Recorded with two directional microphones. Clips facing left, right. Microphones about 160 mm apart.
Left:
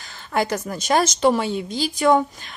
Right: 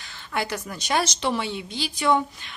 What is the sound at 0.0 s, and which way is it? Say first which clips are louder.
Speech: left 6 dB; 40° left (ahead or behind).